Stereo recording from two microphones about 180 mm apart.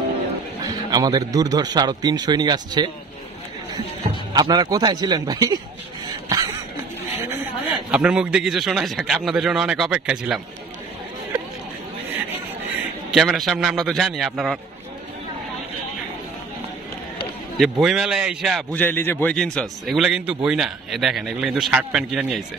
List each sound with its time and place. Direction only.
0.7 s a man's voice: 20° right (ahead or behind)
4.3 s a man's voice: 25° right (ahead or behind)
6.0 s cough: 20° right (ahead or behind)
7.9 s a man's voice: 5° right (ahead or behind)
13.1 s a man's voice: centre (ahead or behind)
17.6 s a man's voice: centre (ahead or behind)
18.7 s a man's voice: 10° left (ahead or behind)